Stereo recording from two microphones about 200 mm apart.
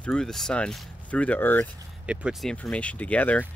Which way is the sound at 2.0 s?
5° right (ahead or behind).